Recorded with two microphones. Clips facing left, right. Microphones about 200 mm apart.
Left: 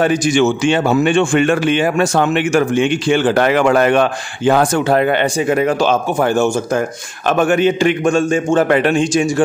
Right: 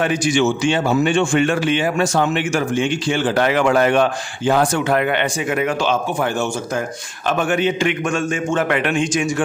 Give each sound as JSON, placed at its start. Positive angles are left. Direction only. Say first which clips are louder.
{"t": 0.0, "sound": "a man's voice", "louder": "left 4 dB", "side_deg": 40}
{"t": 4.7, "sound": "a man's voice", "louder": "left 4 dB", "side_deg": 35}
{"t": 8.0, "sound": "speech", "louder": "left 6 dB", "side_deg": 30}